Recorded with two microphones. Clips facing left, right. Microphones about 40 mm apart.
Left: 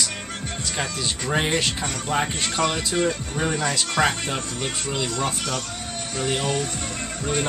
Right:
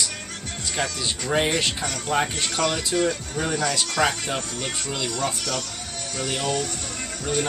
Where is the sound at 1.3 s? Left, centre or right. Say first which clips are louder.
Right 1 dB; centre.